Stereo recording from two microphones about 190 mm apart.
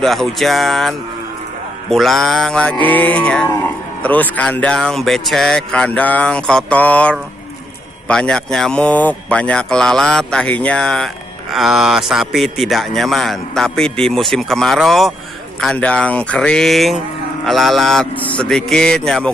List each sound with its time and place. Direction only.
0.0 s a man's voice: centre (ahead or behind)
3.4 s a man's voice: 20° left (ahead or behind)
4.0 s a man's voice: 10° left (ahead or behind)